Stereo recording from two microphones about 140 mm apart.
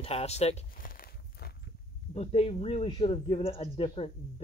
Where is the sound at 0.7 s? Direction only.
90° left.